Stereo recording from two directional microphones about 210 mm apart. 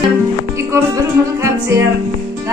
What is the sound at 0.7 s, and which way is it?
Music, 15° right (ahead or behind).